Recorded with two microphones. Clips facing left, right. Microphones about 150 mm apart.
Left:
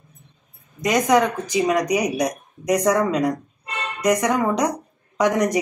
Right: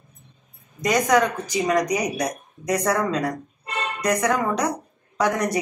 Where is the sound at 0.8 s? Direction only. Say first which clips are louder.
Left 2 dB; 20° left (ahead or behind).